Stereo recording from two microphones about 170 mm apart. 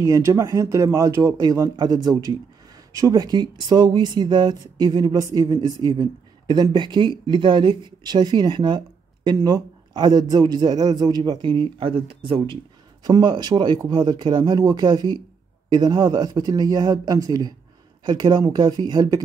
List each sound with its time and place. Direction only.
0.0 s speech: 20° right (ahead or behind)